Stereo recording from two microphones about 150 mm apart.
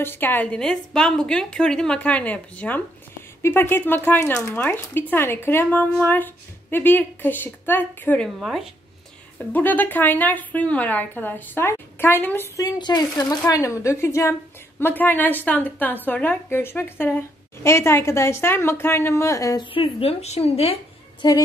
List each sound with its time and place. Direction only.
0.0 s a woman's voice: 15° left (ahead or behind)
8.4 s speech: centre (ahead or behind)
9.5 s a woman's voice: 10° left (ahead or behind)
12.6 s a woman's voice: 30° left (ahead or behind)
19.7 s a woman's voice: 40° left (ahead or behind)
21.2 s a woman's voice: 30° left (ahead or behind)